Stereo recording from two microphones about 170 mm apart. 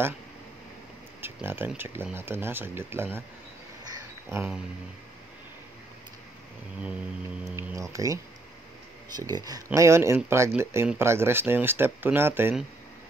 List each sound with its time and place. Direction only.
1.2 s speech: 10° right (ahead or behind)
3.8 s a sound: 20° right (ahead or behind)
7.5 s speech: 15° right (ahead or behind)